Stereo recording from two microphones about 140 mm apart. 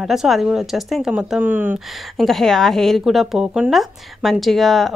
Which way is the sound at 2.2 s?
Centre (ahead or behind).